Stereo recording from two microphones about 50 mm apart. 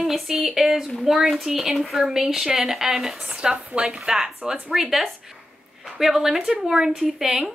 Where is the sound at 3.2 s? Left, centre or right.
Centre.